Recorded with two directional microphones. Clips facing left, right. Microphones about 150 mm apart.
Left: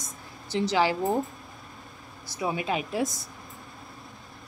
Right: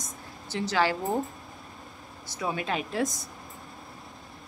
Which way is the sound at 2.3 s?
15° left (ahead or behind).